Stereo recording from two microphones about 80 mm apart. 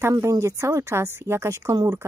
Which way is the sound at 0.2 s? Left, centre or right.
Right.